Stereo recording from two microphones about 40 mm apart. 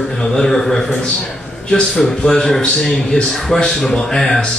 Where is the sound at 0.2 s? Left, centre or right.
Centre.